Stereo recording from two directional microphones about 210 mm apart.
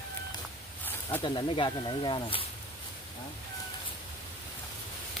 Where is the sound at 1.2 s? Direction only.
25° left (ahead or behind).